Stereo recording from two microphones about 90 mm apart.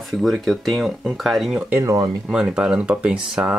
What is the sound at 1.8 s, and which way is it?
Speech, 40° right (ahead or behind).